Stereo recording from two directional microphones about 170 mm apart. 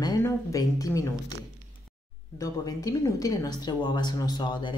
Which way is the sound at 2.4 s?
20° left (ahead or behind).